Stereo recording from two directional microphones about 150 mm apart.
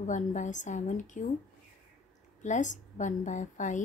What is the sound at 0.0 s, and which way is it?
Speech, 55° left (ahead or behind).